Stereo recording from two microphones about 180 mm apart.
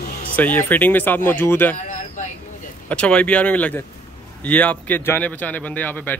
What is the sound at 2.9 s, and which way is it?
Speech, 5° left (ahead or behind).